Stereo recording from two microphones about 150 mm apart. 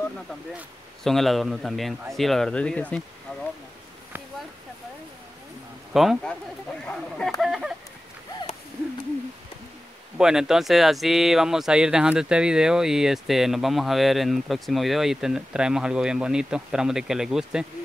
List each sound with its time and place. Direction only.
1.0 s speech: centre (ahead or behind)
5.9 s speech: centre (ahead or behind)
10.1 s speech: 5° right (ahead or behind)